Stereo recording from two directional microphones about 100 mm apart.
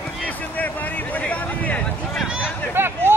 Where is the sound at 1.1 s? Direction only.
15° left (ahead or behind).